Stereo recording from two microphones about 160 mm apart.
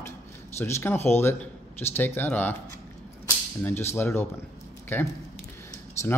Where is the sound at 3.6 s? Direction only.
15° left (ahead or behind).